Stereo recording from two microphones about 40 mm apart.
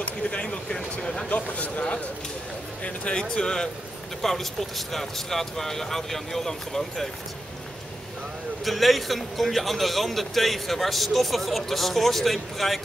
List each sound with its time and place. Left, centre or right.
0.3 s speech: left
1.3 s speech: left; by 3.6 s centre
4.2 s speech: centre
8.6 s a man's voice: centre